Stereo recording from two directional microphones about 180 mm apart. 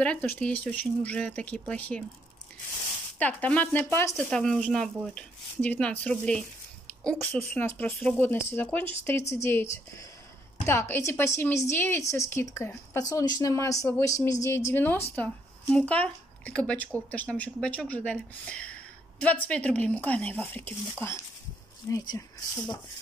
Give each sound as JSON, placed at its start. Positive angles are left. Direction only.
{"t": 0.0, "sound": "speech", "side_deg": 5}
{"t": 3.2, "sound": "speech", "side_deg": 10}